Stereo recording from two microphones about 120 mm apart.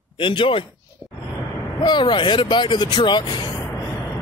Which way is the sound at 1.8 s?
40° left (ahead or behind).